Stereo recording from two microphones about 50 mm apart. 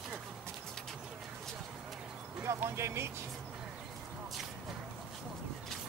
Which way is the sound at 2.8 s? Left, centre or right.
Right.